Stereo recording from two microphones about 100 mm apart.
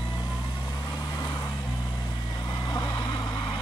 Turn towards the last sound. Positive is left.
turn(degrees=50)  # may be behind; listen again after turning